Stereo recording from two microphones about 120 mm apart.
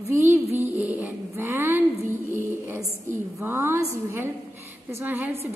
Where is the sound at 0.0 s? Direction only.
20° right (ahead or behind).